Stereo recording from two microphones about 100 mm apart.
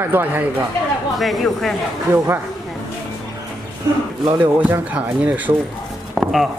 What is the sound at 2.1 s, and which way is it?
Speech, 25° right (ahead or behind).